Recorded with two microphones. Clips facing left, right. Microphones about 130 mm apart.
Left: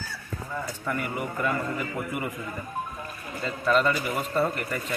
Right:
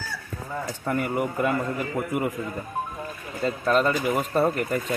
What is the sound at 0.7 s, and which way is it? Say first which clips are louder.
Speech: right 6 dB; 40° right (ahead or behind).